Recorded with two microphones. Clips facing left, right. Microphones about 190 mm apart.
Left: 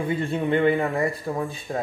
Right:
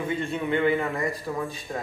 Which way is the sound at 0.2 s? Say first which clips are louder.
Left 4 dB; 35° left (ahead or behind).